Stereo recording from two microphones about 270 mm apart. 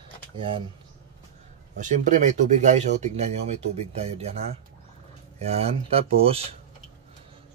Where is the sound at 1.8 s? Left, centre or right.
Right.